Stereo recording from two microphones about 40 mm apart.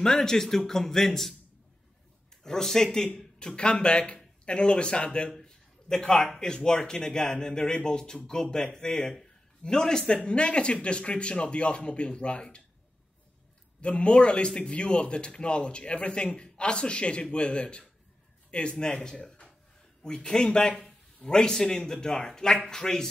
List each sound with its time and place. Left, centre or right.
0.0 s a man's voice: centre
2.4 s a man's voice: centre
5.4 s a sound: centre
6.4 s a man's voice: centre
13.7 s a man's voice: left